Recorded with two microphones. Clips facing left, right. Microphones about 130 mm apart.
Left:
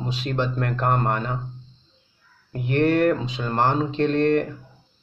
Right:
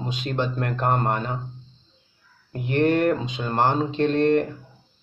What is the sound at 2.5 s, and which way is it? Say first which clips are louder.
Speech: even; 20° right (ahead or behind).